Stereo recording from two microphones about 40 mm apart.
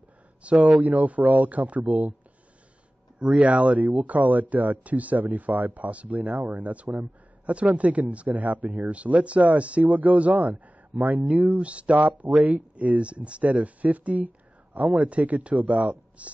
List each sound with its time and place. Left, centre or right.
0.4 s speech: right
3.3 s speech: right